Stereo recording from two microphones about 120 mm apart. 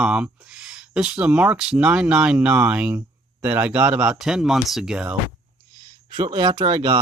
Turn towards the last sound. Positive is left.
turn(degrees=-40)  # may be behind; listen again after turning